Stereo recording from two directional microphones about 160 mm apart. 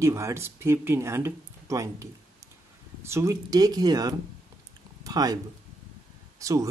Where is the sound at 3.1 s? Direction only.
20° right (ahead or behind).